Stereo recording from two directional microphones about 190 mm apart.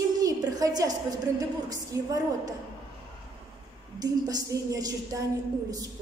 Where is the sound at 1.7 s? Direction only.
20° right (ahead or behind).